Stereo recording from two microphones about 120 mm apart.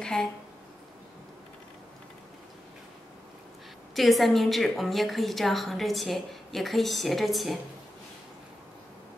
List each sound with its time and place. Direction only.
0.0 s speech: 5° left (ahead or behind)
3.9 s a woman's voice: centre (ahead or behind)